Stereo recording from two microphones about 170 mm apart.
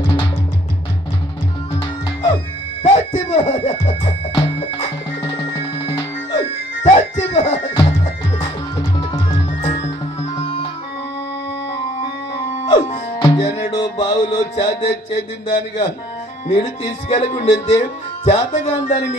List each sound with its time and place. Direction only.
0.0 s music: 30° left (ahead or behind)
2.8 s music: 35° left (ahead or behind)
12.6 s music: 40° left (ahead or behind)
13.2 s music: 25° left (ahead or behind)
16.4 s speech: 35° left (ahead or behind)